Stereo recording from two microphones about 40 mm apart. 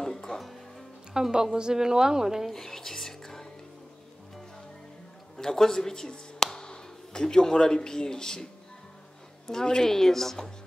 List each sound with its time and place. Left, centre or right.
0.0 s music: centre
1.3 s a woman's voice: centre
2.5 s music: centre
5.4 s speech: centre
9.5 s a woman's voice: centre